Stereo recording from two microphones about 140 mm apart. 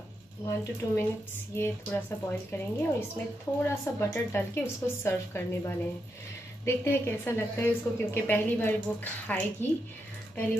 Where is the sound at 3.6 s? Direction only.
15° left (ahead or behind).